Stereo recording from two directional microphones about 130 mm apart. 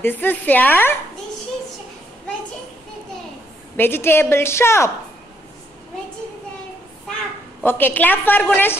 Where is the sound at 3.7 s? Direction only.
15° left (ahead or behind).